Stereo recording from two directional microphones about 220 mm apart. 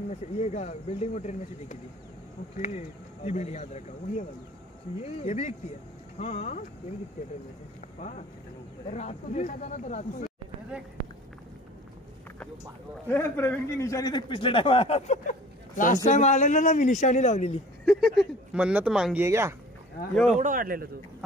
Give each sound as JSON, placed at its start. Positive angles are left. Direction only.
{"t": 0.4, "sound": "a man's voice", "side_deg": 30}
{"t": 8.0, "sound": "a man's voice", "side_deg": 35}
{"t": 13.1, "sound": "a man's voice", "side_deg": 10}
{"t": 17.8, "sound": "speech", "side_deg": 0}
{"t": 20.2, "sound": "speech", "side_deg": -35}